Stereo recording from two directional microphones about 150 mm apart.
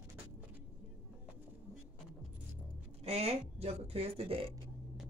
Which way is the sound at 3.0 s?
45° right (ahead or behind).